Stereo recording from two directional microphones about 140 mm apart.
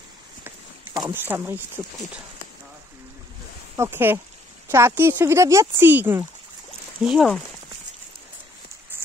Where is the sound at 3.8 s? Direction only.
15° right (ahead or behind).